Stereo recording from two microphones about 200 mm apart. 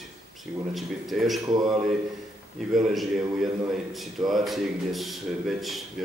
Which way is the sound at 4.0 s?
Centre (ahead or behind).